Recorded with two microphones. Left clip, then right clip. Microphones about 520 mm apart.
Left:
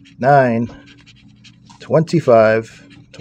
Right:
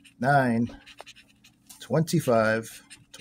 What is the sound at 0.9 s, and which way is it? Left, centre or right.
Scratch, right.